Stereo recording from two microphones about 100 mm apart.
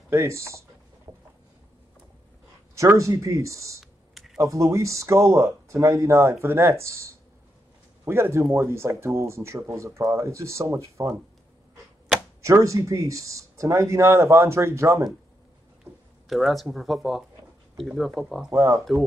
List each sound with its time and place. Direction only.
0.1 s speech: 30° right (ahead or behind)
2.7 s speech: 30° right (ahead or behind)
3.8 s computer keyboard: centre (ahead or behind)
4.4 s speech: 35° right (ahead or behind)
8.0 s speech: 25° right (ahead or behind)
12.4 s speech: 30° right (ahead or behind)
15.8 s speech: centre (ahead or behind)
18.5 s speech: 30° right (ahead or behind)